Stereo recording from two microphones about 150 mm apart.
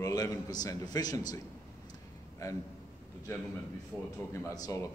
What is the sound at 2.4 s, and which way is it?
Speech, 25° left (ahead or behind).